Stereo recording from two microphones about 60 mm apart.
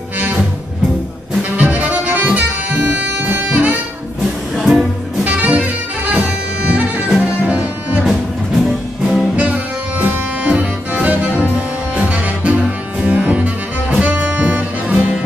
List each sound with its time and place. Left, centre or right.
1.6 s music: right
4.6 s music: centre
5.2 s music: right
8.6 s music: centre
9.4 s music: right